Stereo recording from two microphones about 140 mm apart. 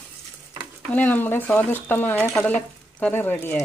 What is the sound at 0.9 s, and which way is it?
Speech, 10° left (ahead or behind).